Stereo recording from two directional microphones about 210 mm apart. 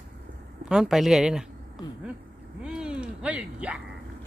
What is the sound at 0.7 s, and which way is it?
Speech, 5° right (ahead or behind).